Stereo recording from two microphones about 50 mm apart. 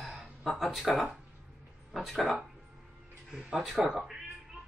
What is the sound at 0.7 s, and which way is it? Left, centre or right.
Speech, centre.